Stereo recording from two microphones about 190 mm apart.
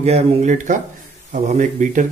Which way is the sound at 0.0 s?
35° right (ahead or behind).